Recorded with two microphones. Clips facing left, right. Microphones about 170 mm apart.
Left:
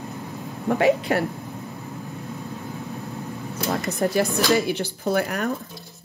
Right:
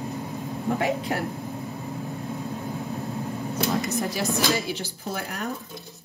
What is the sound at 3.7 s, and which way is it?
Speech, 55° left (ahead or behind).